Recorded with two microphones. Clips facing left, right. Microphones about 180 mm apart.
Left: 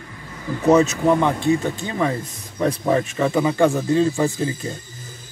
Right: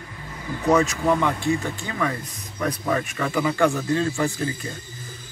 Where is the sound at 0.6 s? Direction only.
25° left (ahead or behind).